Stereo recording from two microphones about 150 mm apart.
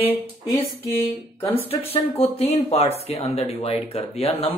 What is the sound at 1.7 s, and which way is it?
Speech, 40° left (ahead or behind).